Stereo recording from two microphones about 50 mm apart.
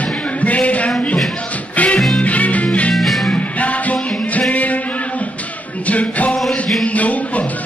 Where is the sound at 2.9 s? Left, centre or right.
Centre.